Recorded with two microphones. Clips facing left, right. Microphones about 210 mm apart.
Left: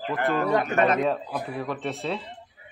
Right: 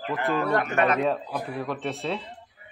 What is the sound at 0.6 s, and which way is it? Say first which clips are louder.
Speech: left 1 dB; 35° left (ahead or behind).